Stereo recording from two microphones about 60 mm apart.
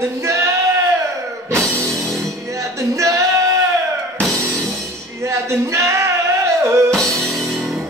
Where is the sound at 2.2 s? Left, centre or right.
Right.